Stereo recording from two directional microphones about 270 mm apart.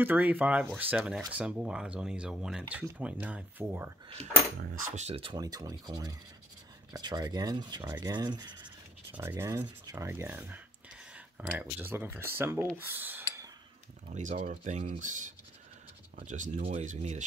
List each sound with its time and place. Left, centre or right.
0.0 s speech: centre
4.6 s rub: right
8.6 s rub: centre
12.7 s a sound: centre
14.0 s speech: right